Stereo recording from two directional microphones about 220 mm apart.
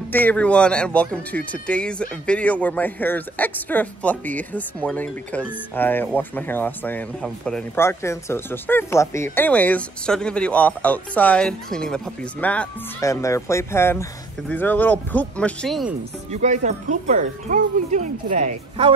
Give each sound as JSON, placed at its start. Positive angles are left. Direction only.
{"t": 0.1, "sound": "speech", "side_deg": 5}
{"t": 16.3, "sound": "speech", "side_deg": -35}